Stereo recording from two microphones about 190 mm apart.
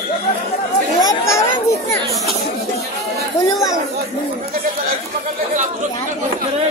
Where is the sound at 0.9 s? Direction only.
15° left (ahead or behind).